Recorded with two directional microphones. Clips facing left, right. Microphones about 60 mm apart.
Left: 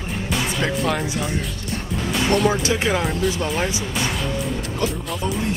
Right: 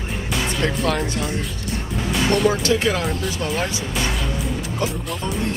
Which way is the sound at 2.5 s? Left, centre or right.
Left.